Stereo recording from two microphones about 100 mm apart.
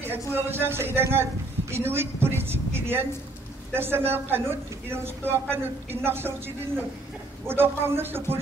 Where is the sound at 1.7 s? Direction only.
25° right (ahead or behind).